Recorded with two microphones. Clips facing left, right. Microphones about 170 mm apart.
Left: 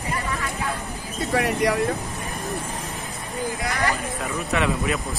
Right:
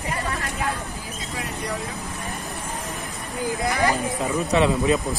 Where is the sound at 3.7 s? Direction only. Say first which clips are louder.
Right 5 dB; 20° right (ahead or behind).